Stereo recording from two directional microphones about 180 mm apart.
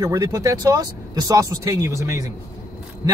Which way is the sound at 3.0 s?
20° right (ahead or behind).